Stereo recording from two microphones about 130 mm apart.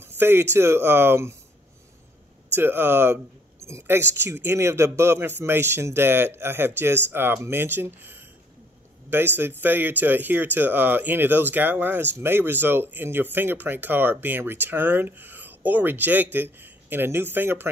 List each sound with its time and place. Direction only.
0.0 s speech: 15° right (ahead or behind)
2.5 s speech: 15° right (ahead or behind)